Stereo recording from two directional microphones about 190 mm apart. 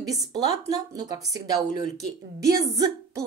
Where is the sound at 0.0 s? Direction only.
20° right (ahead or behind).